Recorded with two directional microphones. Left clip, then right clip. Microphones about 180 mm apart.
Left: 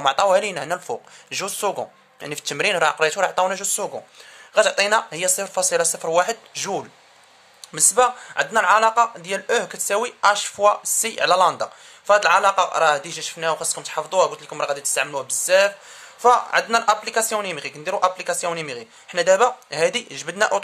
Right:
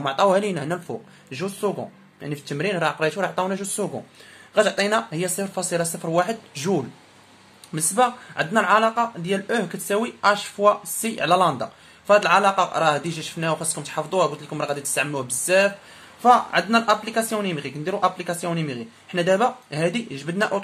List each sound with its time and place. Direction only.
0.0 s speech: 40° left (ahead or behind)
1.3 s speech: 50° left (ahead or behind)